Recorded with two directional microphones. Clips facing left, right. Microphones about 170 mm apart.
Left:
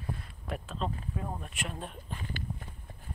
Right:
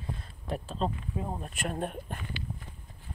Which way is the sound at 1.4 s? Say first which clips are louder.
Right 6 dB; 40° right (ahead or behind).